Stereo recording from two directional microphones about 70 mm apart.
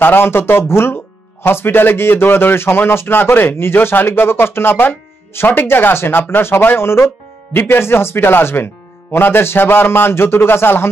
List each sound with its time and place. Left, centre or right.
0.0 s speech: left